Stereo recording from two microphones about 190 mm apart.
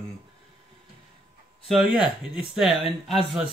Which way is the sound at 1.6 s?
Centre (ahead or behind).